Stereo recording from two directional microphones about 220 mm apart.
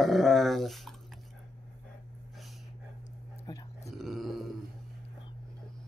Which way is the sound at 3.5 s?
20° left (ahead or behind).